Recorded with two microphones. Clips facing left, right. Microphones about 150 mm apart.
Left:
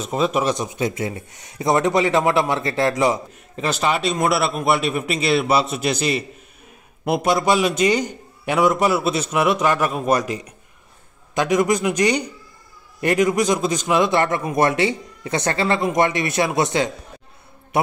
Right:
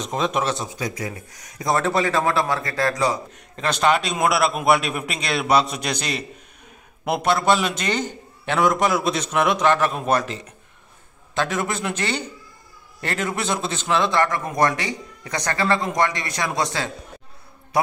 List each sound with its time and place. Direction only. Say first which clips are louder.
0.0 s a man's voice: left 3 dB; 5° left (ahead or behind); by 3.2 s 20° left (ahead or behind)
3.5 s a man's voice: right 1 dB; 5° left (ahead or behind); by 16.9 s 20° left (ahead or behind)